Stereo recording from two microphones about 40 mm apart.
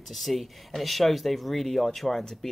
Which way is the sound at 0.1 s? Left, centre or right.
Centre.